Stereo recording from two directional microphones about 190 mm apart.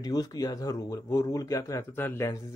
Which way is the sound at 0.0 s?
20° left (ahead or behind).